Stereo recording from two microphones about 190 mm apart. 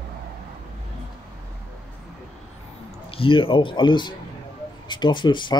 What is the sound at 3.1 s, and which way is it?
Speech, 30° left (ahead or behind).